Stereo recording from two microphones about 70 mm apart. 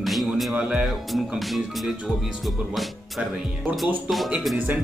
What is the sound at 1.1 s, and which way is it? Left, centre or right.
Speech, centre.